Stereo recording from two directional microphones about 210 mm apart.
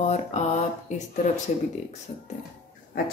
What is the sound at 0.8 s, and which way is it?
Speech, 35° left (ahead or behind).